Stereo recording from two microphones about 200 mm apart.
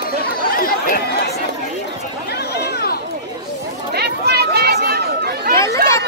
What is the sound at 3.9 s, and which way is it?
Chatter, 55° right (ahead or behind).